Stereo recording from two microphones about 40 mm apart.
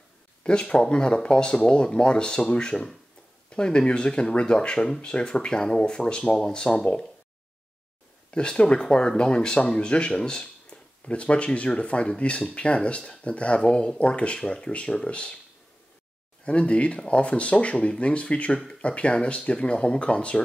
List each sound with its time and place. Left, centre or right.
0.4 s speech: left
8.3 s speech: left
10.7 s a sound: left
11.1 s speech: left
16.4 s speech: left